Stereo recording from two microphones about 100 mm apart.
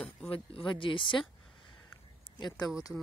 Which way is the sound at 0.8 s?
55° left (ahead or behind).